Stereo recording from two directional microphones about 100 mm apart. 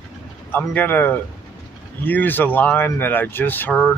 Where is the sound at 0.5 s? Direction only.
20° left (ahead or behind).